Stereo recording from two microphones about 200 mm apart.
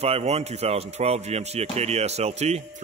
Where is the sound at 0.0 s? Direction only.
30° right (ahead or behind).